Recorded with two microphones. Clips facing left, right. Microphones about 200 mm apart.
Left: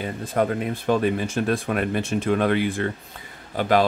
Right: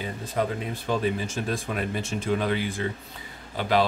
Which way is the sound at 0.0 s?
55° left (ahead or behind).